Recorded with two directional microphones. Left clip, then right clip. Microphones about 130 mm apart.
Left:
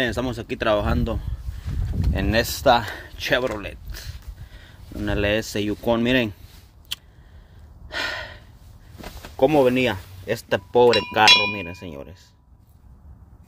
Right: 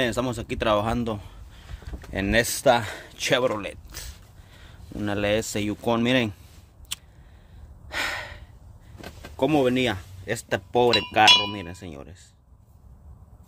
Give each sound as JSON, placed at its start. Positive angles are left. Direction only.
{"t": 0.0, "sound": "speech", "side_deg": -25}
{"t": 3.2, "sound": "speech", "side_deg": -35}
{"t": 5.0, "sound": "speech", "side_deg": -10}
{"t": 6.9, "sound": "a sound", "side_deg": -25}
{"t": 9.4, "sound": "speech", "side_deg": -15}
{"t": 10.8, "sound": "speech", "side_deg": -25}